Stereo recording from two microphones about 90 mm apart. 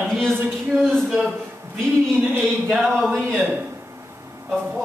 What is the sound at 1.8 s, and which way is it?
Speech, 25° right (ahead or behind).